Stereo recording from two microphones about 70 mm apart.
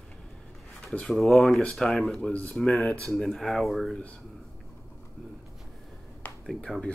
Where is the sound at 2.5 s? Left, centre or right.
Centre.